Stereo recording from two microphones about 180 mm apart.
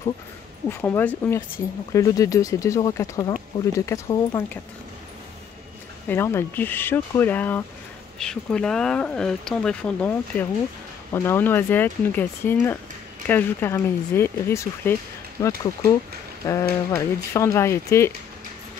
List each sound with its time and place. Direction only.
0.7 s speech: 10° left (ahead or behind)
6.0 s speech: 15° left (ahead or behind)